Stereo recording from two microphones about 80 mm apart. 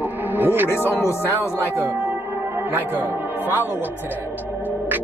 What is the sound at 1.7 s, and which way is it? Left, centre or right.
Music, right.